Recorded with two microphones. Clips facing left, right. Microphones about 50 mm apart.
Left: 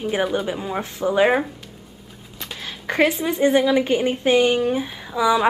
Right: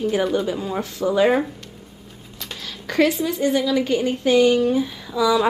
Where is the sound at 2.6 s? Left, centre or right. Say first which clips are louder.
Even; left.